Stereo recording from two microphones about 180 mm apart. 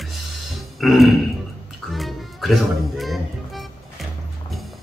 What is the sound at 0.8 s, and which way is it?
Speech, centre (ahead or behind).